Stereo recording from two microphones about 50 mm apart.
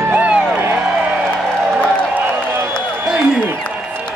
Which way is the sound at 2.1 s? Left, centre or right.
Right.